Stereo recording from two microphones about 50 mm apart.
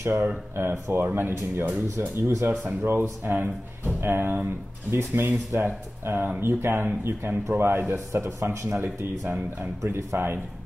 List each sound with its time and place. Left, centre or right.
0.6 s speech: right
2.0 s speech: right
7.9 s speech: right
8.6 s speech: right